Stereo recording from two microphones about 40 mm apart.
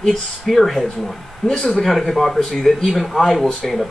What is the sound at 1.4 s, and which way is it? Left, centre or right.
Speech, centre.